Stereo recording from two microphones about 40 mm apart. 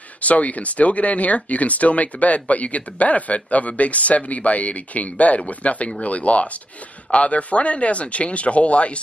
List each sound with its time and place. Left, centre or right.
0.2 s speech: left